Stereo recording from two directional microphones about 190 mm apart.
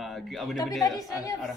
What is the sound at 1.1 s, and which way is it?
Speech, 20° left (ahead or behind).